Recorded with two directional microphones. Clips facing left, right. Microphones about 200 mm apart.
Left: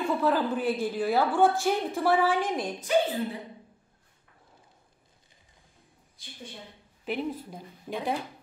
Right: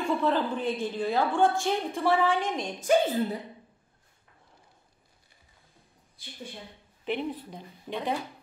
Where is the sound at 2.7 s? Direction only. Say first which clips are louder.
Right 4 dB; 45° right (ahead or behind).